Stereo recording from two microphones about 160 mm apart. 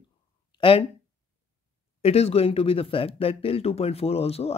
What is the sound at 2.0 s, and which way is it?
Speech, 40° left (ahead or behind).